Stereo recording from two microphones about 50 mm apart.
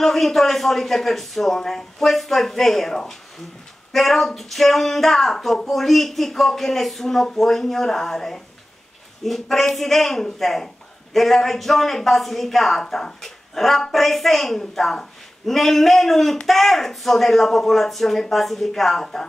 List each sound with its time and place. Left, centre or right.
0.0 s speech: centre